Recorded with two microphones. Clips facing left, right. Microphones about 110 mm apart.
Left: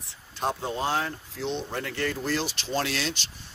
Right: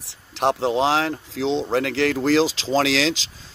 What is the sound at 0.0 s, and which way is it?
Speech, 85° right.